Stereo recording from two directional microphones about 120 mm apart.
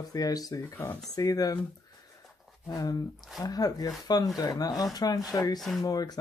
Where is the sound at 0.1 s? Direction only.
30° left (ahead or behind).